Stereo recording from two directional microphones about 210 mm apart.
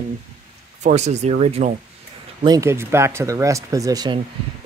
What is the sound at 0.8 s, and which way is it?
Speech, 35° right (ahead or behind).